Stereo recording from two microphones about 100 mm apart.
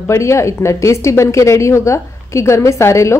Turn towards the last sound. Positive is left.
turn(degrees=30)  # may be behind; listen again after turning